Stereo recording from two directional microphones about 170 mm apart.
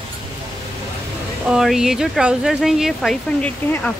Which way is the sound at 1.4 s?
5° right (ahead or behind).